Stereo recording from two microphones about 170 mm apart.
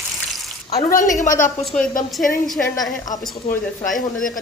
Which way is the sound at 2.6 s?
5° left (ahead or behind).